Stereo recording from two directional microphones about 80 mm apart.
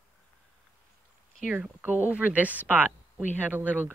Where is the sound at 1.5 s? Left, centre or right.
Centre.